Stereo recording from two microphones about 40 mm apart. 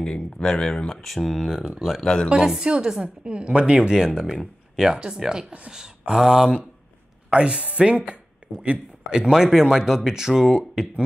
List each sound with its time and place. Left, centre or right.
0.0 s speech: centre
1.1 s speech: centre
2.0 s speech: centre
2.2 s speech: centre
3.3 s speech: right
7.2 s speech: right
8.4 s a sound: right
9.1 s speech: centre